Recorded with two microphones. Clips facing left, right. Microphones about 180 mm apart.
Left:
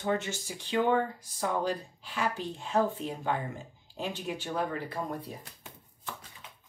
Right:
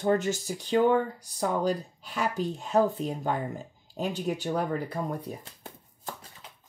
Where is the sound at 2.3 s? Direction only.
40° right (ahead or behind).